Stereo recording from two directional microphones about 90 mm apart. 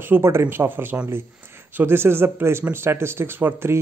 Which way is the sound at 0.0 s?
25° right (ahead or behind).